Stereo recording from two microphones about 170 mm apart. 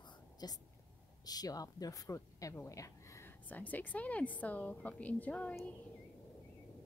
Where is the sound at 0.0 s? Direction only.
25° left (ahead or behind).